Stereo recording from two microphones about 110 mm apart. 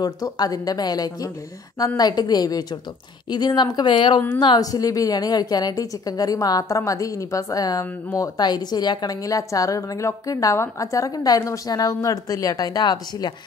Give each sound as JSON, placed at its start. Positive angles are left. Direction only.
{"t": 0.0, "sound": "a woman's voice", "side_deg": 35}
{"t": 8.4, "sound": "a woman's voice", "side_deg": 40}